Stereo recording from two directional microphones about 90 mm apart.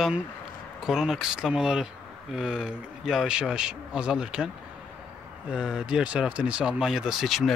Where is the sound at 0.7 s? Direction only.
5° right (ahead or behind).